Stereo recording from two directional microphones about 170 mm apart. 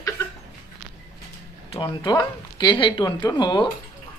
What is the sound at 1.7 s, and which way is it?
Speech, 30° left (ahead or behind).